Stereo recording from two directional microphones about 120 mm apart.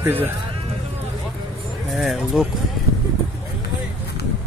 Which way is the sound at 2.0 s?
Centre (ahead or behind).